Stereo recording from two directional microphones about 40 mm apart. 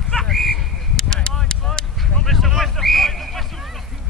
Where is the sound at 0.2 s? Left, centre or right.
Centre.